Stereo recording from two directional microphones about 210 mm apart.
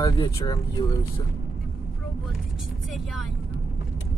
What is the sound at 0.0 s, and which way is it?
Speech, 20° left (ahead or behind).